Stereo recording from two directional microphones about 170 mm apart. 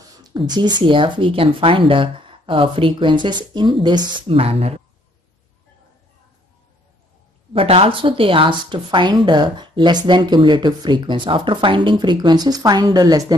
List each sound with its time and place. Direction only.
0.2 s a woman's voice: 25° right (ahead or behind)
7.5 s a woman's voice: 35° right (ahead or behind)